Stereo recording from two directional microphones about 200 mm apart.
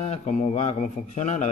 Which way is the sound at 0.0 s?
35° left (ahead or behind).